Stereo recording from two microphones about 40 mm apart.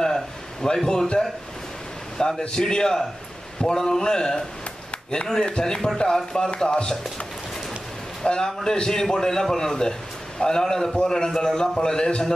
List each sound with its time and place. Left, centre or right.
0.0 s a sound: centre
2.2 s a man's voice: centre
8.2 s a man's voice: centre